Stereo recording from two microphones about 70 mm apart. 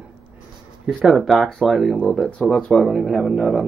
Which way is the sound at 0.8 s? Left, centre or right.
Centre.